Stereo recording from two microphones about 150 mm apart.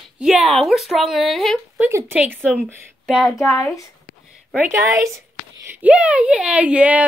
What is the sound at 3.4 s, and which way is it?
Speech, 20° left (ahead or behind).